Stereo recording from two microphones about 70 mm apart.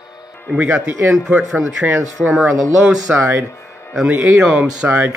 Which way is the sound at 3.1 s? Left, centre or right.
Right.